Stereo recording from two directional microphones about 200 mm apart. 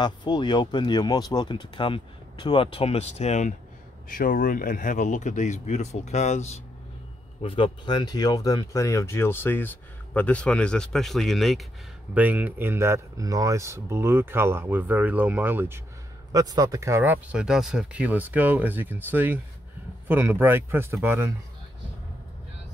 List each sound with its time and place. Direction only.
0.0 s speech: 20° left (ahead or behind); by 21.3 s 10° right (ahead or behind)